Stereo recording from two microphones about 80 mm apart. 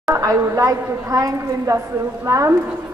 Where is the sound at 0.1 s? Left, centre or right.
Right.